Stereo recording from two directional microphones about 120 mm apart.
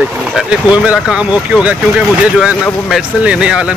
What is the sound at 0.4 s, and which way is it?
Speech, 10° right (ahead or behind).